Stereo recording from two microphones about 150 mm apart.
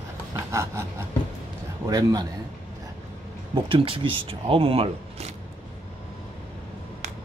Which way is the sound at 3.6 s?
35° right (ahead or behind).